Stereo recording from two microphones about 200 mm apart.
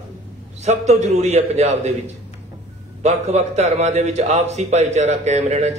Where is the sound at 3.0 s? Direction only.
35° right (ahead or behind).